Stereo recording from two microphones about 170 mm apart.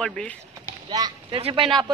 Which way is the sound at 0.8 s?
25° right (ahead or behind).